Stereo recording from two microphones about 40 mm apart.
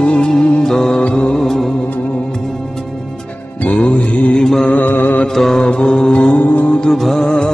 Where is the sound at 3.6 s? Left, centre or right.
Left.